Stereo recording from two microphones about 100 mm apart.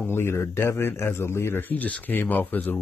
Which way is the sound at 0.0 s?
25° left (ahead or behind).